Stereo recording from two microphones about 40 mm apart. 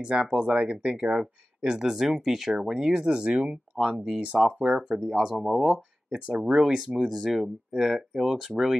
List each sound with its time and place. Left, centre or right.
0.0 s speech: right; by 2.9 s centre
2.9 s speech: right
5.0 s speech: centre
7.1 s speech: centre
7.3 s speech: centre